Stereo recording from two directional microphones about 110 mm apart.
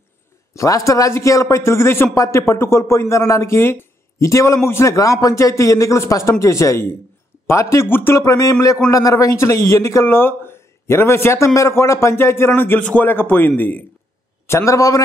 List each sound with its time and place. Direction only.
0.6 s speech: 30° left (ahead or behind)
14.5 s speech: 30° left (ahead or behind)